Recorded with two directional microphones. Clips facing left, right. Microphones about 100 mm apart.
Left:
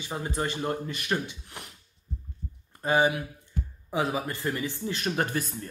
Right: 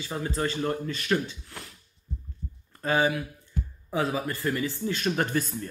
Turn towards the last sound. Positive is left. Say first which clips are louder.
# right 2 dB
turn(degrees=15)  # may be behind; listen again after turning